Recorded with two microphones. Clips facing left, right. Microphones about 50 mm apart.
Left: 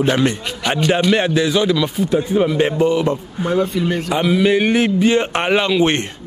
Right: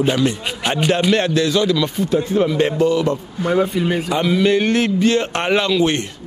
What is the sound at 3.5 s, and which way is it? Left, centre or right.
Speech, centre.